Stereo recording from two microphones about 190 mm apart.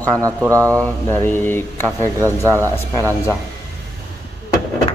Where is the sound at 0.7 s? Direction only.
10° left (ahead or behind).